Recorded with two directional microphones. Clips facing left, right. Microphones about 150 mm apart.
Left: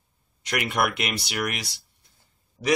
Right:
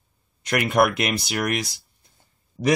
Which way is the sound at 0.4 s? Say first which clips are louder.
Right 6 dB; 50° right (ahead or behind).